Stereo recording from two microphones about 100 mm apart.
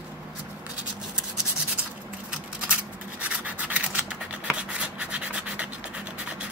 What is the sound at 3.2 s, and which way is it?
Rub, 15° right (ahead or behind).